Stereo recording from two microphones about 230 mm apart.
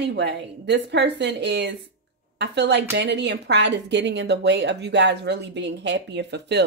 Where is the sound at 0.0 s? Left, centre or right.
Right.